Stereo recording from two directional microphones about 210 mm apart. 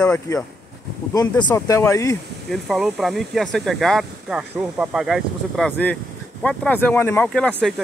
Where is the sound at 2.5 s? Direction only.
Centre (ahead or behind).